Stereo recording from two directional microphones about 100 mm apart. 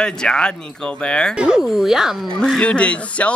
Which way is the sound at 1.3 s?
10° right (ahead or behind).